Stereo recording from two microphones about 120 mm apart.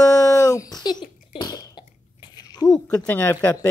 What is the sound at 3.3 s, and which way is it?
Speech, 30° left (ahead or behind).